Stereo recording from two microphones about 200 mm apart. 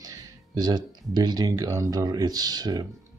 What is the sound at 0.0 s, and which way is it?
Speech, 20° right (ahead or behind).